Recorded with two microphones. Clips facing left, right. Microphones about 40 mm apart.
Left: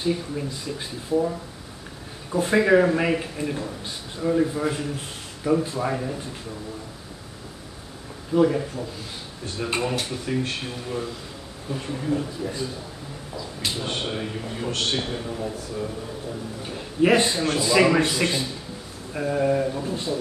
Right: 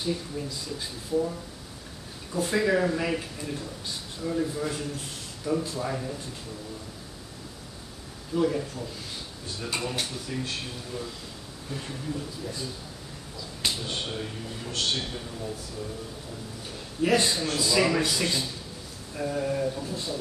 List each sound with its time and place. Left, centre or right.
0.0 s a man's voice: left
2.3 s a man's voice: left
8.3 s a man's voice: left
10.3 s a man's voice: left
11.7 s speech: centre
12.0 s a man's voice: left
13.7 s a man's voice: left
15.3 s a man's voice: left